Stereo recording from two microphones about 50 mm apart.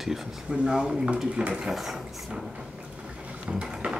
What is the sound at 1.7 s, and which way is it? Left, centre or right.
Speech, centre.